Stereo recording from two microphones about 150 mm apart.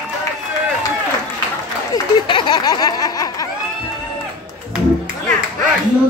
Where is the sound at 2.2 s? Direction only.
30° left (ahead or behind).